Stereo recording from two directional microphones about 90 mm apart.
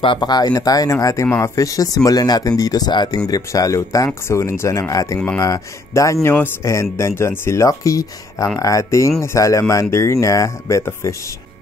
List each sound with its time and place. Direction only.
0.0 s speech: 60° left (ahead or behind); by 6.1 s 40° left (ahead or behind)
6.2 s speech: 25° left (ahead or behind)
6.6 s speech: 35° left (ahead or behind)